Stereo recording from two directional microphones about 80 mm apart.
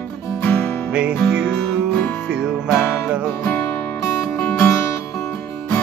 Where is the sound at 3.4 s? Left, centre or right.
Left.